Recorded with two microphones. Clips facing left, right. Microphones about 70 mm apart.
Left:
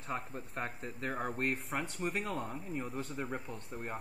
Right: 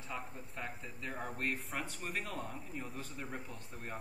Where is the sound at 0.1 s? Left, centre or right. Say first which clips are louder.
Left 5 dB; left.